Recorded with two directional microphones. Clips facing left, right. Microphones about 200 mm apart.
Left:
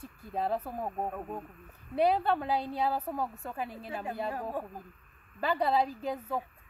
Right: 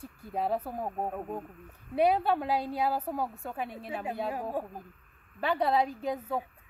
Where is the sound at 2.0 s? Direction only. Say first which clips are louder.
Right 1 dB; 5° right (ahead or behind).